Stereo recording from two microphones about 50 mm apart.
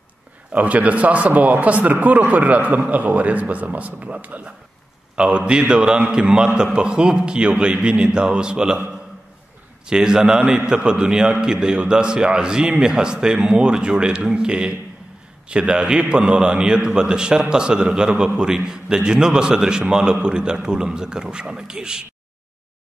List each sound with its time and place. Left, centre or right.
0.5 s speech: right
5.1 s a man's voice: centre
9.8 s a man's voice: centre